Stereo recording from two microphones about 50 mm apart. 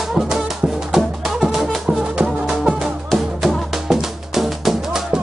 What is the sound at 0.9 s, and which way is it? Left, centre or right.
Music, centre.